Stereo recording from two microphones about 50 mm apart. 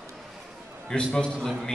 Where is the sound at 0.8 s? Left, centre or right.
Centre.